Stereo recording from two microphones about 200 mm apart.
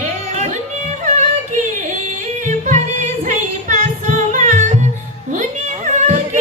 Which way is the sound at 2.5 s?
35° right (ahead or behind).